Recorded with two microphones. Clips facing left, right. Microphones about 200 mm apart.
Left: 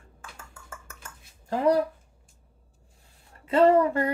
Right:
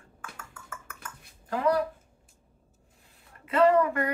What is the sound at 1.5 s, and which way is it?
Speech, 30° left (ahead or behind).